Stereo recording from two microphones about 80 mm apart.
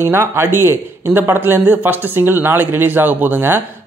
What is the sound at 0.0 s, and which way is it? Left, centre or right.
Speech, right.